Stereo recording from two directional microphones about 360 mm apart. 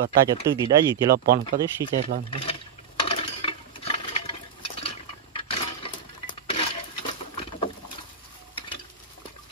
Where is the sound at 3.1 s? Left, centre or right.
Centre.